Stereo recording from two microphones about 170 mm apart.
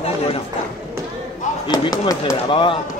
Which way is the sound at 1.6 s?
25° left (ahead or behind).